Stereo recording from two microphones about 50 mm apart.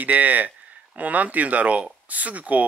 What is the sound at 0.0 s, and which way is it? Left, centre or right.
Speech, right.